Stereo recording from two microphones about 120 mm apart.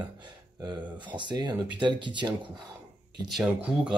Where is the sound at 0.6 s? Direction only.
40° right (ahead or behind).